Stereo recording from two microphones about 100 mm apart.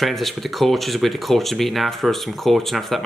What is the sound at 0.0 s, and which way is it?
Speech, centre (ahead or behind).